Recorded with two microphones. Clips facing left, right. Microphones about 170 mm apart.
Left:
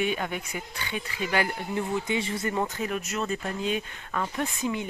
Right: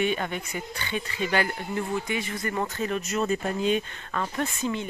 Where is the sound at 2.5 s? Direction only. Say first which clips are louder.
Right 3 dB; 10° left (ahead or behind).